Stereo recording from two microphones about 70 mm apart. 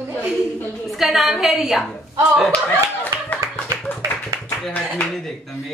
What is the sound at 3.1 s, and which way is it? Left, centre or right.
Clapping, right.